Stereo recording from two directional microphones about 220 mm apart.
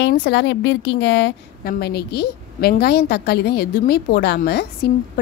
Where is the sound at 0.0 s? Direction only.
50° left (ahead or behind).